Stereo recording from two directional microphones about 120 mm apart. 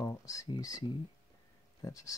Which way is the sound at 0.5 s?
30° left (ahead or behind).